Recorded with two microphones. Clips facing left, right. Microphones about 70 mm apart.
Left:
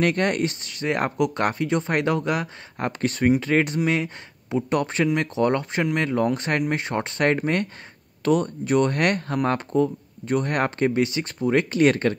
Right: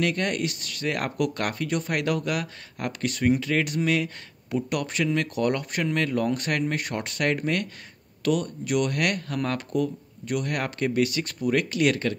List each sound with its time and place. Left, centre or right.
0.0 s speech: left